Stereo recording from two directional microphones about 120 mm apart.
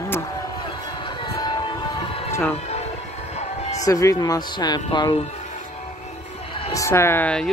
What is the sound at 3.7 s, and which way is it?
Speech, 30° left (ahead or behind).